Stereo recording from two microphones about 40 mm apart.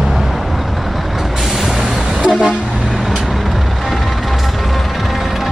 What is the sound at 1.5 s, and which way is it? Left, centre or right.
Vehicle, centre.